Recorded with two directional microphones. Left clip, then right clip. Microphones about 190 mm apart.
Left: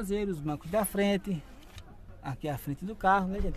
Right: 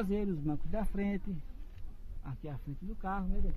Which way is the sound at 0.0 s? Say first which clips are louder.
Left 3 dB; 10° right (ahead or behind).